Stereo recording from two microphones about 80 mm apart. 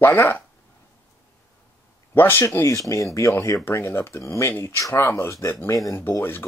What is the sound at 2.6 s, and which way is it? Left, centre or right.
Speech, left.